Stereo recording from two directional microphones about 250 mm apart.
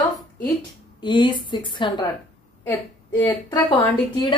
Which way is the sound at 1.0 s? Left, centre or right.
Centre.